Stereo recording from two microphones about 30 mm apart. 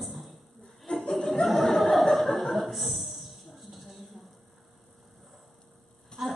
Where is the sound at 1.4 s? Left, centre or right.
Centre.